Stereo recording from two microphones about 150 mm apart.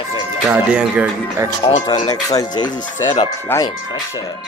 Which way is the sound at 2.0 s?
25° left (ahead or behind).